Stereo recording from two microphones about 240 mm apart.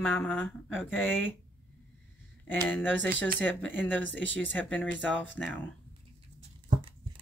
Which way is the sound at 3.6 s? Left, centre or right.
Centre.